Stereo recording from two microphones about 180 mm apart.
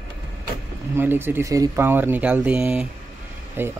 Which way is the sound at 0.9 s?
10° right (ahead or behind).